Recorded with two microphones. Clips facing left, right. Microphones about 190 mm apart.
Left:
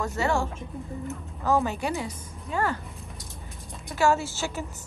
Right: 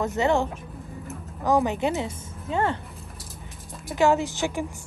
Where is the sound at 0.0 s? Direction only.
20° right (ahead or behind).